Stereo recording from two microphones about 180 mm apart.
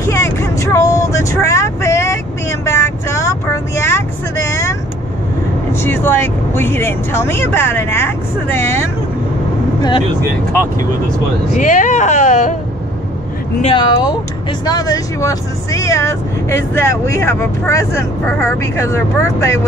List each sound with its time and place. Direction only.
0.0 s vehicle: 15° left (ahead or behind)
5.7 s speech: 10° left (ahead or behind)
11.5 s speech: 45° left (ahead or behind)
13.7 s speech: 20° left (ahead or behind)